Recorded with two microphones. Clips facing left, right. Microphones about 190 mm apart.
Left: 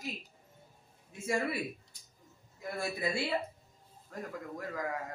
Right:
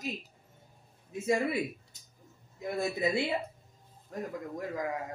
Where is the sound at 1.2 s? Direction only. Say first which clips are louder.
Right 4 dB; 20° right (ahead or behind).